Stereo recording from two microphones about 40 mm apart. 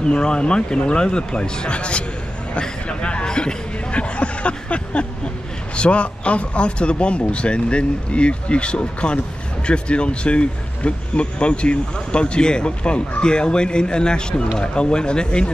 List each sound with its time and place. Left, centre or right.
0.0 s speech: left
2.6 s a sound: left
5.8 s speech: left